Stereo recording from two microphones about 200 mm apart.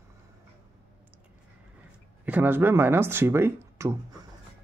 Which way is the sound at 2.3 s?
10° right (ahead or behind).